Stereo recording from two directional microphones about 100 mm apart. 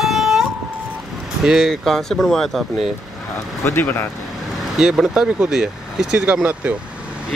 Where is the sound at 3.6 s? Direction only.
20° left (ahead or behind).